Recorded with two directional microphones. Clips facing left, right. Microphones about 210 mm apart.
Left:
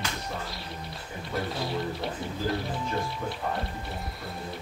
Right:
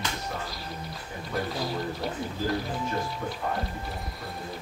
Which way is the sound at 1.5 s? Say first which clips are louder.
Even; centre (ahead or behind).